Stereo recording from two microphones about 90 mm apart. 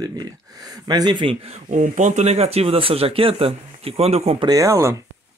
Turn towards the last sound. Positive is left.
turn(degrees=-35)  # may be behind; listen again after turning